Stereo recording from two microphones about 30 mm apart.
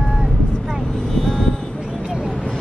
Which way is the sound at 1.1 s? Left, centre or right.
Left.